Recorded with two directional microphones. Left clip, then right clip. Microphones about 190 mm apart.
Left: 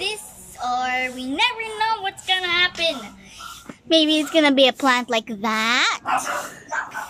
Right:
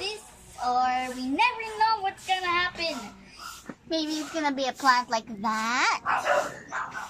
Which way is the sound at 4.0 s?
40° left (ahead or behind).